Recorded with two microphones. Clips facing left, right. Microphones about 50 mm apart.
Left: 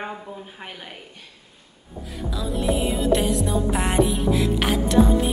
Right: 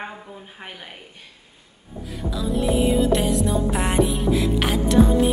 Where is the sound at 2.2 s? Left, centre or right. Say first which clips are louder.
Right 2 dB; centre.